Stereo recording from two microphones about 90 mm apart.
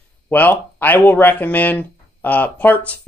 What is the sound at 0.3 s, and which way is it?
Speech, 20° left (ahead or behind).